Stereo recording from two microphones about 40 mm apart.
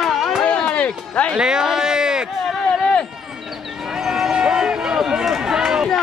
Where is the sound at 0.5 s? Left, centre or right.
Left.